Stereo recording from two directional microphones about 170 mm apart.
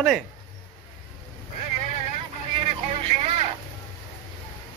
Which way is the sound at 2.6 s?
35° right (ahead or behind).